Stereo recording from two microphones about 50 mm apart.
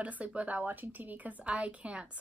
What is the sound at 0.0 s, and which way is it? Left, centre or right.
A woman's voice, right.